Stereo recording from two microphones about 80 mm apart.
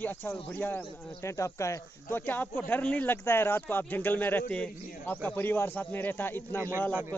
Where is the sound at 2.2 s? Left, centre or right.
Left.